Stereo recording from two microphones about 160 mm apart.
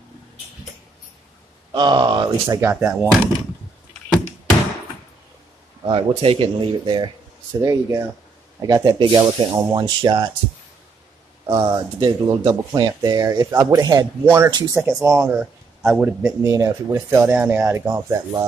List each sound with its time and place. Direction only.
1.7 s speech: 25° right (ahead or behind)
2.5 s speech: 15° right (ahead or behind)
5.9 s speech: 35° right (ahead or behind)
11.4 s speech: 25° right (ahead or behind)
14.5 s speech: 25° right (ahead or behind)